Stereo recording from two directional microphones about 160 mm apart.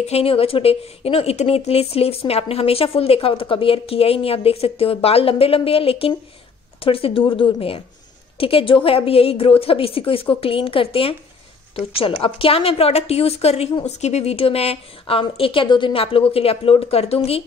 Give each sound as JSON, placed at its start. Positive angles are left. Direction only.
{"t": 0.0, "sound": "a woman's voice", "side_deg": 40}